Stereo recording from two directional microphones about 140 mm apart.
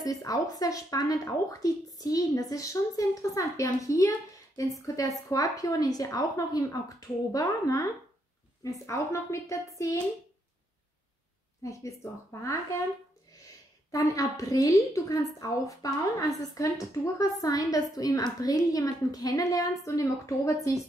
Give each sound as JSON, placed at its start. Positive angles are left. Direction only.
{"t": 0.0, "sound": "a woman's voice", "side_deg": 25}
{"t": 11.6, "sound": "a woman's voice", "side_deg": 20}
{"t": 13.9, "sound": "a woman's voice", "side_deg": 25}